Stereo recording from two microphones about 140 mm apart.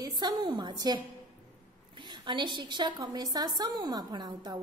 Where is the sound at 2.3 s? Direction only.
35° right (ahead or behind).